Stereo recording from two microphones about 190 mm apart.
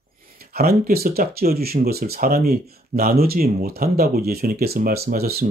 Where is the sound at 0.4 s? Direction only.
55° right (ahead or behind).